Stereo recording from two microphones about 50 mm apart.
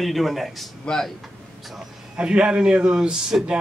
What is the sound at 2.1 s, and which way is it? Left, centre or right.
A man's voice, centre.